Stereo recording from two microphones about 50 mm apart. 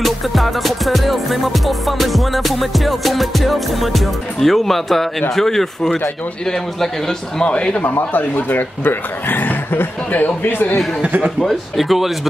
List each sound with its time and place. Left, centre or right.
0.0 s music: centre
5.3 s a man's voice: centre
7.4 s speech: left
7.9 s speech: left
11.0 s a man's voice: right
11.4 s music: centre